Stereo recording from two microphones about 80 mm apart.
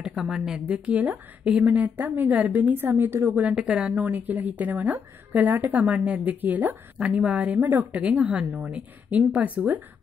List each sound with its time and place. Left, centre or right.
0.0 s speech: centre; by 3.4 s right
3.4 s speech: centre